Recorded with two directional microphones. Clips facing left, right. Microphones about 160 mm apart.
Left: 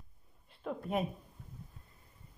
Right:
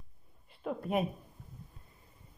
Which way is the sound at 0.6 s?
5° right (ahead or behind).